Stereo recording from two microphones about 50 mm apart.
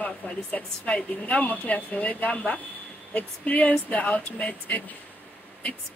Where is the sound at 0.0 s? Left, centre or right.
Left.